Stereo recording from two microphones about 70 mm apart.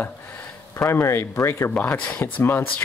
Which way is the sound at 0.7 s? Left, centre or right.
Left.